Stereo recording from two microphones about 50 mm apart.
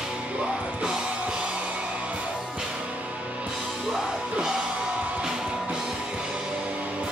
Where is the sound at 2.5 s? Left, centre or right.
Centre.